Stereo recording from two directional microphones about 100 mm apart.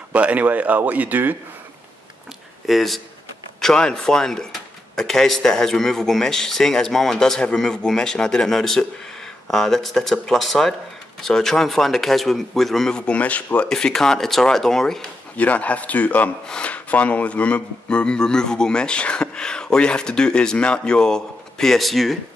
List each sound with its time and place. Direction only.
0.1 s speech: 15° right (ahead or behind)
2.6 s speech: centre (ahead or behind)